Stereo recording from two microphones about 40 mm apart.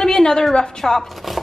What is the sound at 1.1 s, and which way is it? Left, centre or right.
Speech, centre.